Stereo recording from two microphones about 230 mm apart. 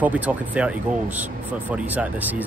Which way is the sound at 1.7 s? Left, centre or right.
Centre.